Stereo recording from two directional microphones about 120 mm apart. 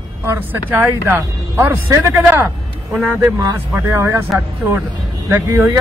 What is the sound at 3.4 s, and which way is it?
Speech, 25° right (ahead or behind).